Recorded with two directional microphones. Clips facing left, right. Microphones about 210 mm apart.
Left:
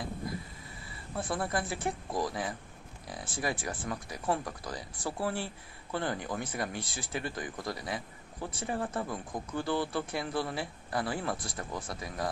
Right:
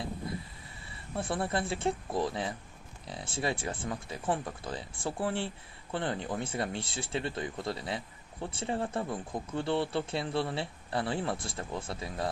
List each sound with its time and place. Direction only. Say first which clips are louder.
1.1 s speech: right 1 dB; 25° right (ahead or behind)